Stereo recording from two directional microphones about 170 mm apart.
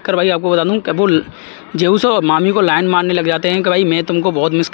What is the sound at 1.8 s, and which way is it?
A man's voice, 10° left (ahead or behind).